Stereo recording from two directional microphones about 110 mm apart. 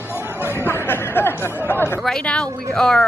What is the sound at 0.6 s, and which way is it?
Music, 20° left (ahead or behind).